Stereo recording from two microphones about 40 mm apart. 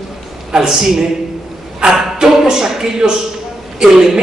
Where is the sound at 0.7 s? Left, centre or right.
Centre.